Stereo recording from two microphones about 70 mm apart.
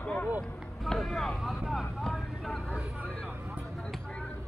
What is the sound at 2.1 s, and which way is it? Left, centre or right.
Vehicle, centre.